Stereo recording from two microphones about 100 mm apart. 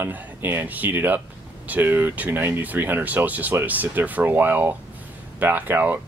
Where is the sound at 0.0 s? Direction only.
20° right (ahead or behind).